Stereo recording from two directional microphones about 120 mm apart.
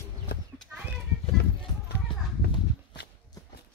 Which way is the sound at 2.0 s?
45° left (ahead or behind).